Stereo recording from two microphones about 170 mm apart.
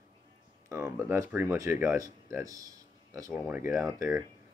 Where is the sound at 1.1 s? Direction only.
15° right (ahead or behind).